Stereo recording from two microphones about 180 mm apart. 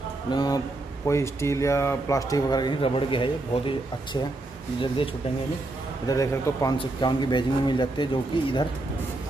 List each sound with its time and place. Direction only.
0.3 s speech: 20° left (ahead or behind)
6.0 s speech: 20° left (ahead or behind)